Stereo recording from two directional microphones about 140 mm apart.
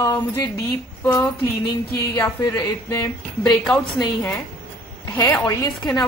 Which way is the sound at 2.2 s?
25° left (ahead or behind).